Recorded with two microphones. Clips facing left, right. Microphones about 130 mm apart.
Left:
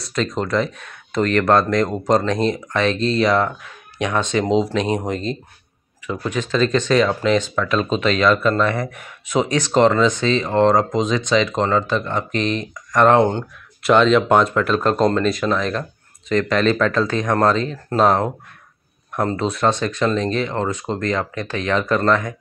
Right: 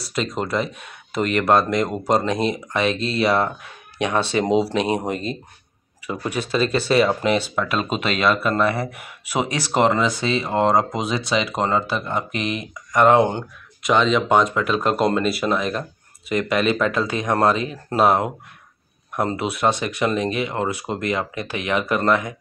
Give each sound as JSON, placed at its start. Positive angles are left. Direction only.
{"t": 0.0, "sound": "speech", "side_deg": -5}
{"t": 3.3, "sound": "speech", "side_deg": -30}
{"t": 4.9, "sound": "speech", "side_deg": -10}